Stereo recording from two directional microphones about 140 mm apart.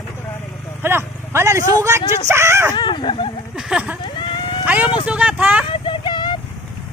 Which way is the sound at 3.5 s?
5° right (ahead or behind).